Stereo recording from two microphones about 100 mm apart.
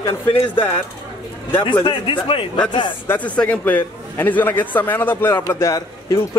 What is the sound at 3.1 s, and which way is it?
A man's voice, 15° left (ahead or behind).